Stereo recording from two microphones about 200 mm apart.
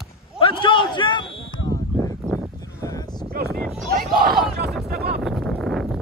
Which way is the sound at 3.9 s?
45° right (ahead or behind).